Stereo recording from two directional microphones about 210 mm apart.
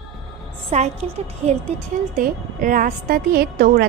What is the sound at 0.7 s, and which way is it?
Speech, 30° right (ahead or behind).